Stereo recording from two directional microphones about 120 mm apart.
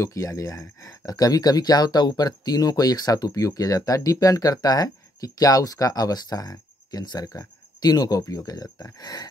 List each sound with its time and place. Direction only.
0.0 s speech: 25° left (ahead or behind)